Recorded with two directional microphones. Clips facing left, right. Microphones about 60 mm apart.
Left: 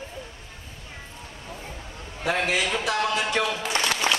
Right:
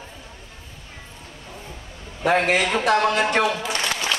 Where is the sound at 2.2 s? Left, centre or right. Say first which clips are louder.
Right 5 dB; right.